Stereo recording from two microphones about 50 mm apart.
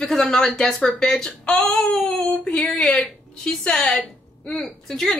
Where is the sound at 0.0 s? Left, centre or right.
Centre.